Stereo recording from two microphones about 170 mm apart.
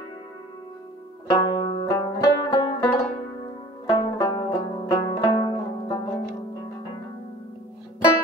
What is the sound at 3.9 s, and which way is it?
Music, 20° left (ahead or behind).